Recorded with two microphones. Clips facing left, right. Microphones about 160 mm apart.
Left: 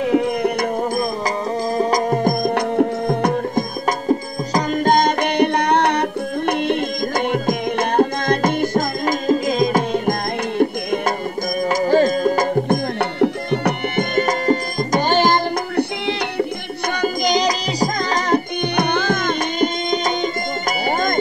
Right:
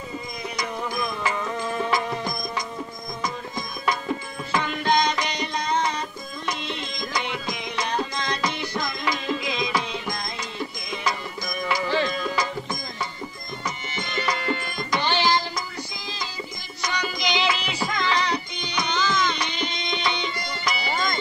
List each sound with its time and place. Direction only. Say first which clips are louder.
0.1 s music: left 16 dB; 65° left (ahead or behind)
1.8 s music: left 9 dB; 40° left (ahead or behind); by 3.6 s 65° left (ahead or behind)
3.8 s music: left 4 dB; 40° left (ahead or behind)
11.7 s music: left 9 dB; 45° left (ahead or behind)